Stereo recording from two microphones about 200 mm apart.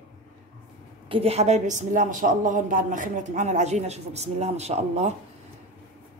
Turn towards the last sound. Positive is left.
turn(degrees=-35)  # may be behind; listen again after turning